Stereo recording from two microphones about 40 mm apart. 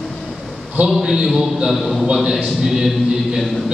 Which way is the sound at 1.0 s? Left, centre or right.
Centre.